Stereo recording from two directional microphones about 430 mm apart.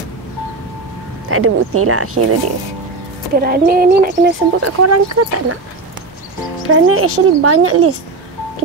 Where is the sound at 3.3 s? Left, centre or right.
Right.